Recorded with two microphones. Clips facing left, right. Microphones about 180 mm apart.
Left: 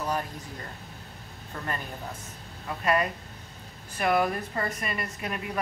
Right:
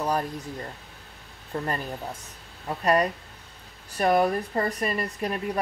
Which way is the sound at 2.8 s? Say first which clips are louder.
Right 3 dB; 35° right (ahead or behind).